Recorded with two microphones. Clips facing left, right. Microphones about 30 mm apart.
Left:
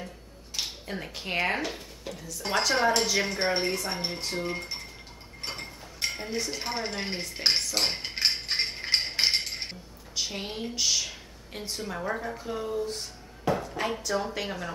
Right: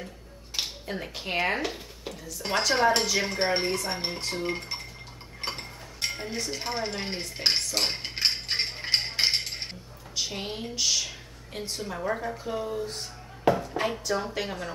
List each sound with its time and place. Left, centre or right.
0.8 s a woman's voice: centre
4.3 s cutlery: centre
5.9 s dishes: centre
13.5 s a sound: right
14.0 s a woman's voice: centre